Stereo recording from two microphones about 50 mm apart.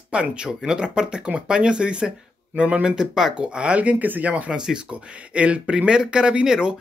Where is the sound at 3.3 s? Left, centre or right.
Right.